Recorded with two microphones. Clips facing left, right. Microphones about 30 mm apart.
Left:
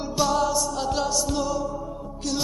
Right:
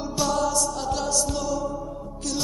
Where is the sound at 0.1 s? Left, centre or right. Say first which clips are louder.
Left 2 dB; centre.